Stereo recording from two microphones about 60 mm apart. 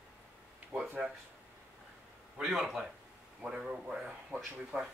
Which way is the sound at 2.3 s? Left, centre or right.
Centre.